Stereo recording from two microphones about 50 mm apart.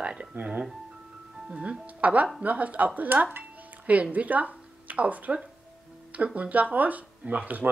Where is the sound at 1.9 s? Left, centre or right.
Right.